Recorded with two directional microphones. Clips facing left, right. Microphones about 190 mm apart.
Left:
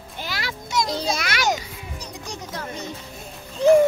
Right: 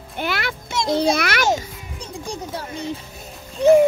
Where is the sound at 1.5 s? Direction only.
30° right (ahead or behind).